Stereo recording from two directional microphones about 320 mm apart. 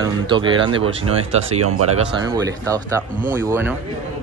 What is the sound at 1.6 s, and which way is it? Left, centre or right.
Speech, right.